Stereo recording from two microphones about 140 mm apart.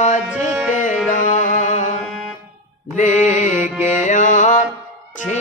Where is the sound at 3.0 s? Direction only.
60° left (ahead or behind).